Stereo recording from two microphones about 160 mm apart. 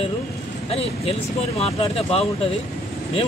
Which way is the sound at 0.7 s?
35° left (ahead or behind).